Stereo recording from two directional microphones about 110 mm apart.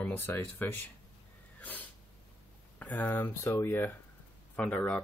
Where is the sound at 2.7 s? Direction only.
15° left (ahead or behind).